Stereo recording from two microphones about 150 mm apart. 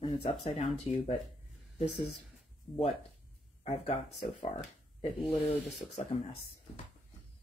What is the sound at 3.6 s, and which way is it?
Speech, 50° left (ahead or behind).